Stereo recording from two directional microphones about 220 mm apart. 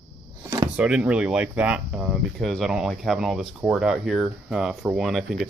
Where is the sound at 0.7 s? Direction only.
5° right (ahead or behind).